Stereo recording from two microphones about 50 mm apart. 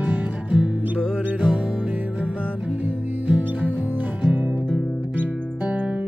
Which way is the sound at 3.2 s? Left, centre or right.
Right.